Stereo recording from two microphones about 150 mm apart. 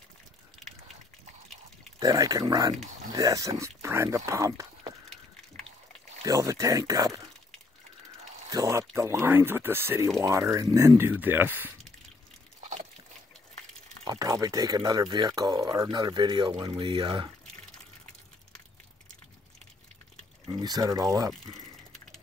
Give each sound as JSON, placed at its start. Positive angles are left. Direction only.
{"t": 2.0, "sound": "speech", "side_deg": -25}
{"t": 6.2, "sound": "speech", "side_deg": -20}
{"t": 8.5, "sound": "speech", "side_deg": -20}
{"t": 14.0, "sound": "speech", "side_deg": -25}
{"t": 20.4, "sound": "speech", "side_deg": -25}